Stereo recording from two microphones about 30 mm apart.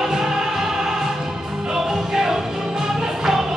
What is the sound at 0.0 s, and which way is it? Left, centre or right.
Music, centre.